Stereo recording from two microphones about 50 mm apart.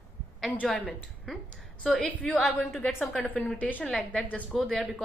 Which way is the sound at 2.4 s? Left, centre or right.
Centre.